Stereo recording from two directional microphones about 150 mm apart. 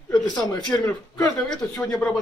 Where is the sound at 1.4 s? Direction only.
5° left (ahead or behind).